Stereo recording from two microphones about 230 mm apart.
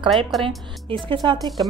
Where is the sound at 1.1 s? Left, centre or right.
Centre.